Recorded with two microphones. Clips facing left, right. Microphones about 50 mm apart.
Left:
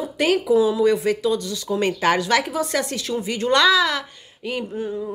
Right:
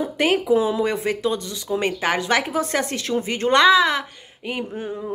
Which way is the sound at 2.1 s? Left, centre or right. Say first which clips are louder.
Even; right.